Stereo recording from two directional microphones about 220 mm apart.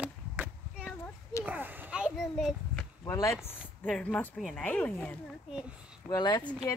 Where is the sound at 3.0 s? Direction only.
15° left (ahead or behind).